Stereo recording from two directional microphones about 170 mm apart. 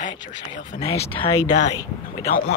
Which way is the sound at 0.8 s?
35° left (ahead or behind).